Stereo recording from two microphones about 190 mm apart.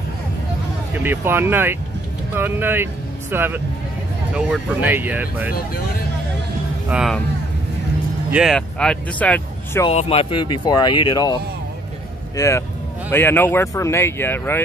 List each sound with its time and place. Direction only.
0.9 s speech: 10° right (ahead or behind)
6.9 s speech: 5° right (ahead or behind)
8.3 s speech: 5° right (ahead or behind)
9.8 s speech: 30° left (ahead or behind)
12.4 s speech: 15° left (ahead or behind)